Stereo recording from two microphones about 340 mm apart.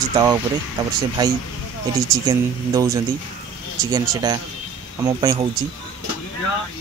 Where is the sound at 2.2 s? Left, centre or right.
Centre.